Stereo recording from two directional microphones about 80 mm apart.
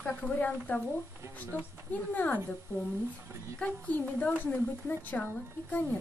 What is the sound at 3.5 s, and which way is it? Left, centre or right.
Speech, centre.